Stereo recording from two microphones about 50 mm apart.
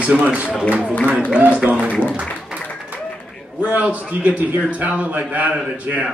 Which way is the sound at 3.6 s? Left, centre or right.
Right.